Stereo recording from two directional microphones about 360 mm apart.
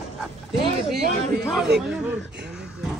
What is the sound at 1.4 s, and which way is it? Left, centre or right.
Speech, centre.